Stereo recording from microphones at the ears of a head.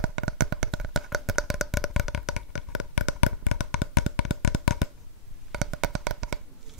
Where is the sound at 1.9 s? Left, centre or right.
Left.